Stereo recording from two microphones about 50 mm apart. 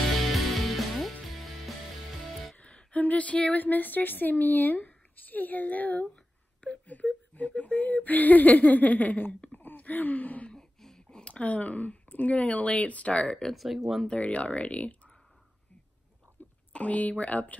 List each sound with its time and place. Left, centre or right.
0.2 s music: centre
2.5 s speech: left
10.5 s a sound: centre
11.4 s speech: left
13.4 s speech: centre
14.0 s speech: left
16.4 s a sound: left
16.7 s speech: left